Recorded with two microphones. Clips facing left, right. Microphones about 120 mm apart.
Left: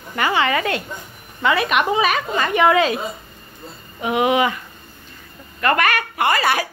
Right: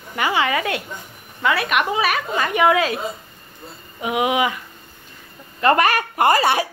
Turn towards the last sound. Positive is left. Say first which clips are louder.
# right 1 dB
turn(degrees=-25)  # may be behind; listen again after turning